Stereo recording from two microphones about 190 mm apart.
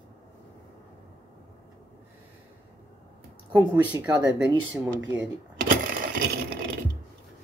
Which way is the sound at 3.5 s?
20° right (ahead or behind).